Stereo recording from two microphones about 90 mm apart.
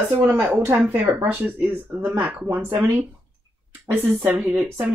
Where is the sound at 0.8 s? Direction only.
25° right (ahead or behind).